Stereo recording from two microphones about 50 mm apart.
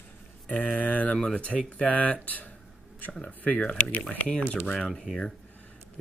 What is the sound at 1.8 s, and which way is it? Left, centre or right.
Mantra, left.